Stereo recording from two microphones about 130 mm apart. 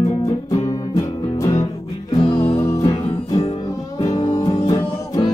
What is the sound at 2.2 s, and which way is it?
Music, 40° left (ahead or behind).